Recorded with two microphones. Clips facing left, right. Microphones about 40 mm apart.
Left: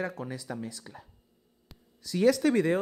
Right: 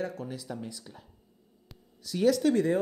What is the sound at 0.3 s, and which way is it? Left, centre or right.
Speech, centre.